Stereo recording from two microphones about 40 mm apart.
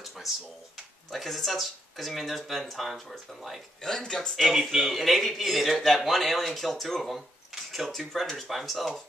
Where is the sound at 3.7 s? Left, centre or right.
Centre.